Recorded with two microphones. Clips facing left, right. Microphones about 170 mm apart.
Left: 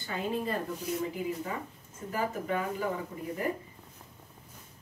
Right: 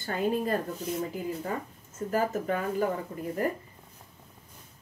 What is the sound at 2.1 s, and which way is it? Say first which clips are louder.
Speech: right 4 dB; 45° right (ahead or behind).